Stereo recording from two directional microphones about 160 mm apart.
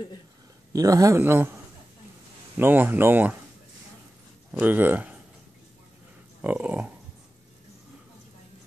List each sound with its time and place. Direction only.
0.7 s speech: 20° right (ahead or behind)
4.5 s speech: 10° right (ahead or behind)
6.4 s speech: 10° right (ahead or behind)